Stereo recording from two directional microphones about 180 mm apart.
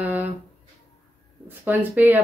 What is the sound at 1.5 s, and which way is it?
Speech, 10° right (ahead or behind).